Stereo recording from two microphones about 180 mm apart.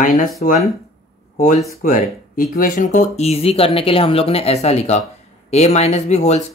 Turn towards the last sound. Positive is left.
turn(degrees=35)  # may be behind; listen again after turning